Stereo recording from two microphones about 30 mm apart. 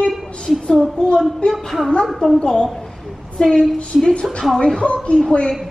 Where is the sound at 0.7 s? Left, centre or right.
Left.